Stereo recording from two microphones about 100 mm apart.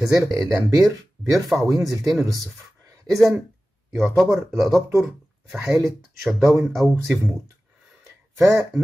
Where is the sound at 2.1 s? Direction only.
Centre (ahead or behind).